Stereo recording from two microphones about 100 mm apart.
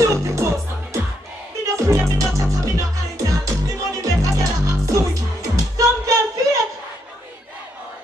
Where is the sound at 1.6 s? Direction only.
30° right (ahead or behind).